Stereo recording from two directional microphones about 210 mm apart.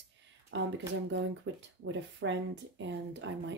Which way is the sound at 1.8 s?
65° right (ahead or behind).